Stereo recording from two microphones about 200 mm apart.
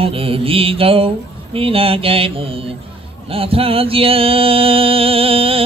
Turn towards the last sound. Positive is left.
turn(degrees=-30)  # may be behind; listen again after turning